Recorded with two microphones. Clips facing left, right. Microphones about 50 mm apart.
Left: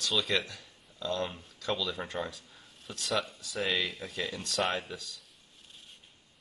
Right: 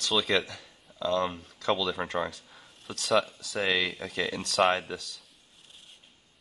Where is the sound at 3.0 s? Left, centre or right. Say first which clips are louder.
Right 7 dB; centre.